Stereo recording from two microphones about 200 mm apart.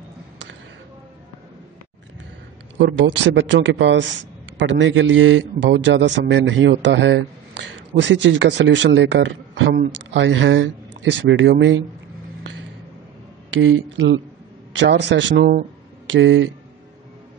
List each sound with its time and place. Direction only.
2.8 s a man's voice: 65° right (ahead or behind)
13.5 s a man's voice: 75° right (ahead or behind)